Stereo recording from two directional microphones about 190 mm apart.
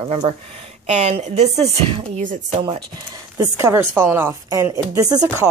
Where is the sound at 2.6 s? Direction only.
25° right (ahead or behind).